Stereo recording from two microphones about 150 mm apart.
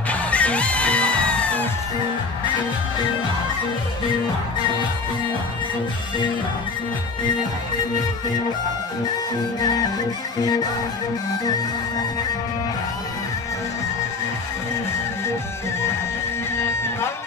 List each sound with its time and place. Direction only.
0.1 s music: 10° left (ahead or behind)
9.6 s music: 25° left (ahead or behind)